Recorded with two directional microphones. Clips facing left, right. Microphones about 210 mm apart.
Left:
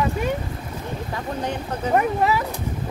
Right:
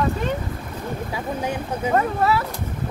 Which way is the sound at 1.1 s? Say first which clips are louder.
Even; 10° right (ahead or behind).